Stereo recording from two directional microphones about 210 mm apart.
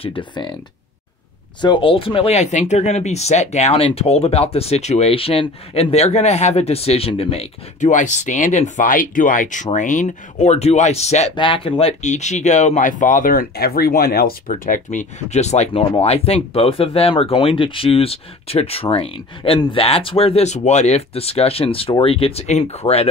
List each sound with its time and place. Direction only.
0.0 s speech: 25° left (ahead or behind)
1.6 s speech: 20° left (ahead or behind); by 14.3 s 45° left (ahead or behind)
14.5 s speech: 35° left (ahead or behind)